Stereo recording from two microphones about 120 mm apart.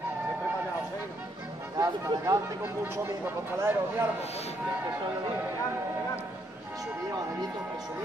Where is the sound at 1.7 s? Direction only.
25° right (ahead or behind).